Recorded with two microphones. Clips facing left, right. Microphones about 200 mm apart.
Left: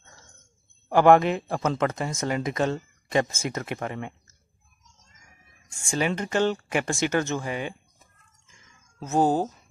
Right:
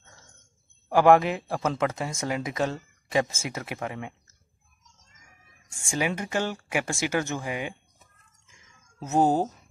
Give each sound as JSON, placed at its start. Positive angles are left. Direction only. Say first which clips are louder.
{"t": 0.8, "sound": "speech", "louder": "left 1 dB", "side_deg": -5}
{"t": 5.9, "sound": "speech", "louder": "left 2 dB", "side_deg": -10}
{"t": 9.2, "sound": "speech", "louder": "even", "side_deg": -20}